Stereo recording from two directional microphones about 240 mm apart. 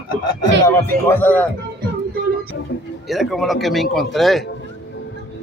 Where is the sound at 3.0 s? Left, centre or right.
Centre.